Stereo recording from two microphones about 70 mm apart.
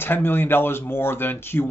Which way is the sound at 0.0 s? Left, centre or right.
Left.